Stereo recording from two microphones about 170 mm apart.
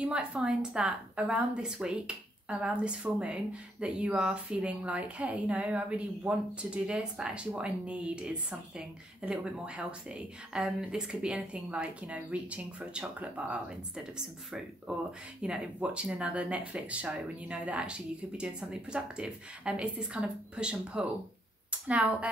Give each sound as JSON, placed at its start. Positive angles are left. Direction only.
{"t": 0.0, "sound": "a woman's voice", "side_deg": -5}